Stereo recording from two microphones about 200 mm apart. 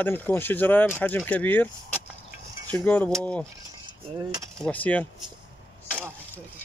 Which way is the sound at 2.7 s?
10° left (ahead or behind).